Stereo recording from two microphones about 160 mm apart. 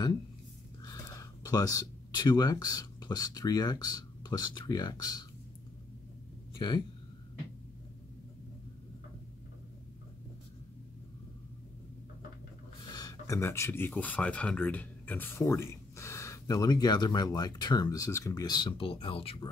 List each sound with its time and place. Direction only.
0.8 s speech: 25° left (ahead or behind)
6.5 s speech: 30° left (ahead or behind)
12.9 s speech: 20° left (ahead or behind)